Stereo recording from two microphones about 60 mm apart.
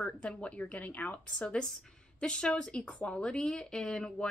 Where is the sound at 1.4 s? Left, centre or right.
Centre.